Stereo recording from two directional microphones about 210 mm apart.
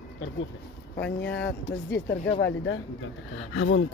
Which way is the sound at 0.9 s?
55° left (ahead or behind).